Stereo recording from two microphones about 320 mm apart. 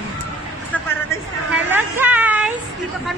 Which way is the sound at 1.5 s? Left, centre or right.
Centre.